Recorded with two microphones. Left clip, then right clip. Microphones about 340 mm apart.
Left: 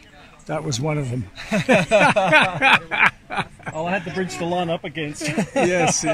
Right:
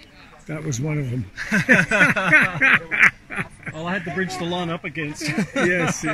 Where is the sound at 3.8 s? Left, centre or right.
Left.